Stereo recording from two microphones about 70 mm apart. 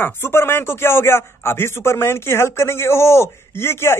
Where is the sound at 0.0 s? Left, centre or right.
Left.